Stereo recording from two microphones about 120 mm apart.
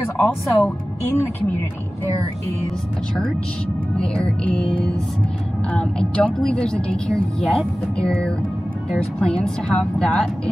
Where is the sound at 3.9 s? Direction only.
5° left (ahead or behind).